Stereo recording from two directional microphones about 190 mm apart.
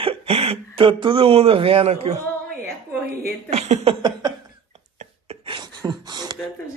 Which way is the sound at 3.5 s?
35° right (ahead or behind).